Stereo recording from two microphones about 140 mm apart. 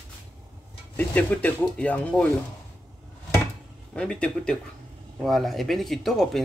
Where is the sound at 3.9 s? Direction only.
5° left (ahead or behind).